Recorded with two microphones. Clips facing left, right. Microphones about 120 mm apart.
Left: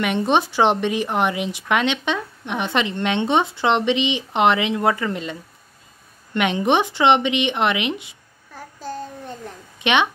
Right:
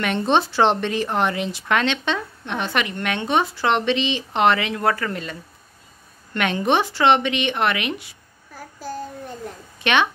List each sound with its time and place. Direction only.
0.0 s speech: 15° left (ahead or behind)
8.5 s child singing: 5° right (ahead or behind)
9.8 s a sound: 20° left (ahead or behind)